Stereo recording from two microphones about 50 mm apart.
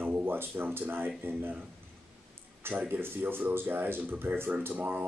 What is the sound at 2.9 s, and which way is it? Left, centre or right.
Speech, right.